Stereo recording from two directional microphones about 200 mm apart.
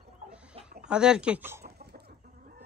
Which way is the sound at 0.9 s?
5° right (ahead or behind).